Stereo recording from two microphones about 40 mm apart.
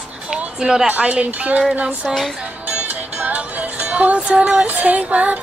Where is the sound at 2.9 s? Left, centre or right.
Right.